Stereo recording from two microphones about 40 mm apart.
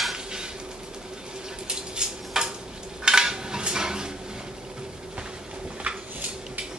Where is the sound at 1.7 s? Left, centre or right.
Centre.